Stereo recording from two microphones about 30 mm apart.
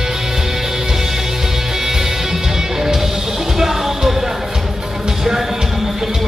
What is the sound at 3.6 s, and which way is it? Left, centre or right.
Music, centre.